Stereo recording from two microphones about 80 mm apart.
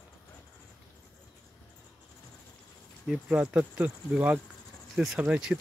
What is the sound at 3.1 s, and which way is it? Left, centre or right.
Speech, centre.